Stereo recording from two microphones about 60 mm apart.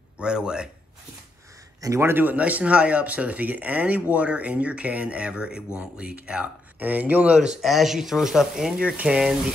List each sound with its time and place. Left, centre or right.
0.2 s speech: centre
2.0 s speech: right
7.3 s speech: centre